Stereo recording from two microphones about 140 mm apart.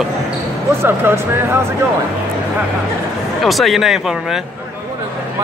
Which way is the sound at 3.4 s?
Centre (ahead or behind).